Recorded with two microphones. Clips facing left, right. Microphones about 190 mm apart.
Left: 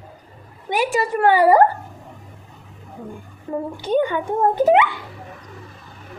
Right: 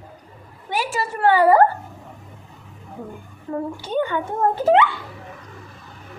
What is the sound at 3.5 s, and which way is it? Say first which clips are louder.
Speech: left 1 dB; 25° left (ahead or behind).